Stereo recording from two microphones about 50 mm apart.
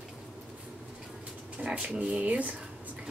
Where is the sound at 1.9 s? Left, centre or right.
Centre.